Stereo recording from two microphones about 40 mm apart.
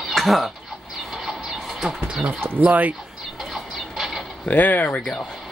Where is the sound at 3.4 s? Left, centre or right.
Centre.